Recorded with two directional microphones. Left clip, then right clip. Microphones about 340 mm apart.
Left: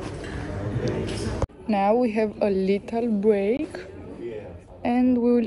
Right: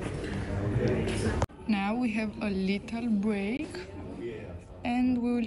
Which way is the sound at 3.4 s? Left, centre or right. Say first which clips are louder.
Left 10 dB; right.